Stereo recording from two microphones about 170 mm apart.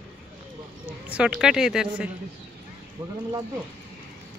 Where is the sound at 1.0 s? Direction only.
5° right (ahead or behind).